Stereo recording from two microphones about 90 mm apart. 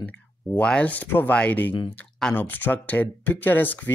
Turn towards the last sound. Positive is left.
turn(degrees=20)  # may be behind; listen again after turning